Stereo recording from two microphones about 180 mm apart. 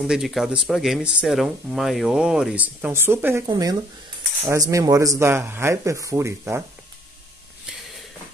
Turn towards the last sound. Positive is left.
turn(degrees=-15)  # may be behind; listen again after turning